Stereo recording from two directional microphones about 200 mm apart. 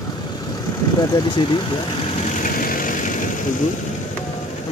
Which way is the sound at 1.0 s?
20° left (ahead or behind).